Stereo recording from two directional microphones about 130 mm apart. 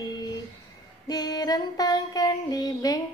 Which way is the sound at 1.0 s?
30° left (ahead or behind).